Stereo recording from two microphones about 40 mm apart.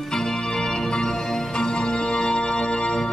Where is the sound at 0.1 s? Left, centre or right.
Centre.